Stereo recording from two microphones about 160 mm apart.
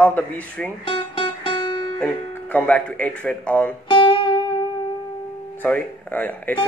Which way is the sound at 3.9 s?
30° left (ahead or behind).